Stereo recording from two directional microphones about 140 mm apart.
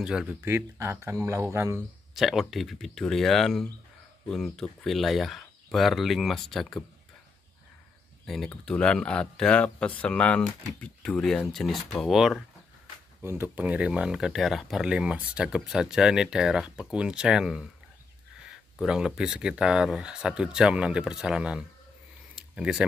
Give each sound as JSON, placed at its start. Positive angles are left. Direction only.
{"t": 0.0, "sound": "speech", "side_deg": -5}
{"t": 0.5, "sound": "speech", "side_deg": -15}
{"t": 2.1, "sound": "speech", "side_deg": 0}
{"t": 8.5, "sound": "speech", "side_deg": 5}
{"t": 13.2, "sound": "speech", "side_deg": -15}
{"t": 18.8, "sound": "speech", "side_deg": -5}